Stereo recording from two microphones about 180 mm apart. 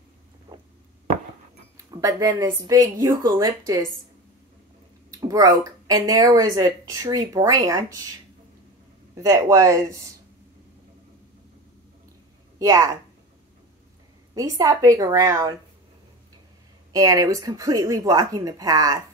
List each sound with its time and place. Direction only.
1.9 s speech: 20° right (ahead or behind)
5.1 s speech: 20° right (ahead or behind)
9.1 s speech: 20° right (ahead or behind)
12.5 s a woman's voice: 20° right (ahead or behind)
14.3 s speech: 20° right (ahead or behind)
16.9 s speech: 20° right (ahead or behind)